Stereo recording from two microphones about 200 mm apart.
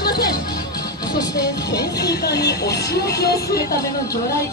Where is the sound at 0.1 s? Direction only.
20° left (ahead or behind).